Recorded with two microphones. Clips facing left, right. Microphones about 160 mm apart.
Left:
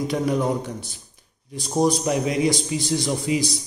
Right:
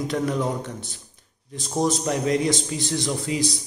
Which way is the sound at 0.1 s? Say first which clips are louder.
Left 3 dB; 15° left (ahead or behind).